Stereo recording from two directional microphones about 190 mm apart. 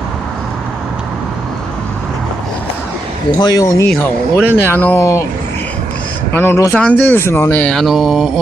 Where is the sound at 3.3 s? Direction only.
20° left (ahead or behind).